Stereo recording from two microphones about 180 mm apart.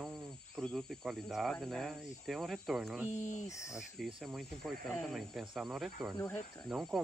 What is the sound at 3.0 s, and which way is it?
Speech, 40° left (ahead or behind).